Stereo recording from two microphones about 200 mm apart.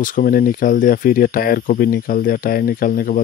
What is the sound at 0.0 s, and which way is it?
Speech, 40° left (ahead or behind).